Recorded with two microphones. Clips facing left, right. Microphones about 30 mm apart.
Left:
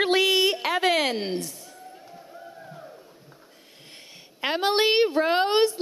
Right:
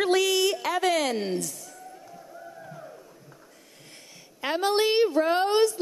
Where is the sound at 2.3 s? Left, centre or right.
Centre.